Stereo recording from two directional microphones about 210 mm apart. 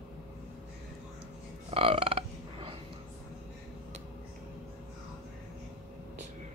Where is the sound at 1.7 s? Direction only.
25° right (ahead or behind).